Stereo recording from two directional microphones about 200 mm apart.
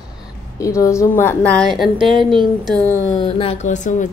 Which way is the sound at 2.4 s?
20° right (ahead or behind).